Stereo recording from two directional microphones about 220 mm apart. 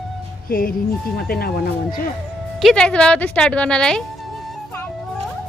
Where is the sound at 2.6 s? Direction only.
Centre (ahead or behind).